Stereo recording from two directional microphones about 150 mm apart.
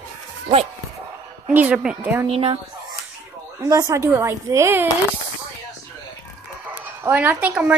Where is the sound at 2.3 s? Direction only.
40° right (ahead or behind).